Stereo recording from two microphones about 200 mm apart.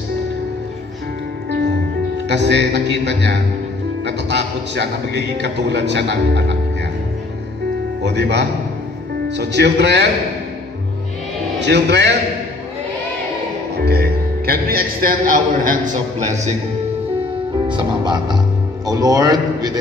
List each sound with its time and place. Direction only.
2.2 s a man's voice: 60° right (ahead or behind)
8.0 s a man's voice: 60° right (ahead or behind)
11.6 s a man's voice: 60° right (ahead or behind)
13.7 s a man's voice: 50° right (ahead or behind); by 16.5 s 35° right (ahead or behind)
17.6 s music: 20° right (ahead or behind)
18.9 s a man's voice: 15° right (ahead or behind)